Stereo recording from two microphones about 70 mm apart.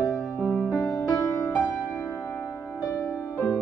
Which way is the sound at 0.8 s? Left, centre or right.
Centre.